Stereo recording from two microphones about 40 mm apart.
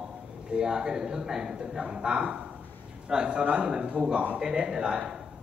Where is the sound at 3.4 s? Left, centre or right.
Right.